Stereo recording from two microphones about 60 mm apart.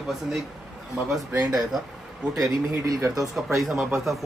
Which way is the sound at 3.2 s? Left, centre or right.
Centre.